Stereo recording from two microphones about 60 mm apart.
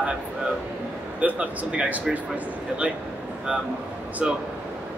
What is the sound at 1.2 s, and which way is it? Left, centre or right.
Speech, right.